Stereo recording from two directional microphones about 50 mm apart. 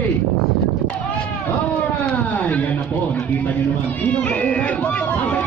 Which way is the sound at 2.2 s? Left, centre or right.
Left.